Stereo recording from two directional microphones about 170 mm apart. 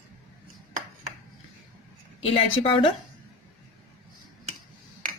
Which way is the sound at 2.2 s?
30° left (ahead or behind).